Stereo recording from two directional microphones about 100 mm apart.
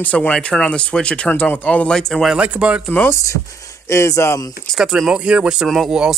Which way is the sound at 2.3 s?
15° right (ahead or behind).